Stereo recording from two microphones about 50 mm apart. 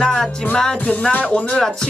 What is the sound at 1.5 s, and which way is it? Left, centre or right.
Speech, centre.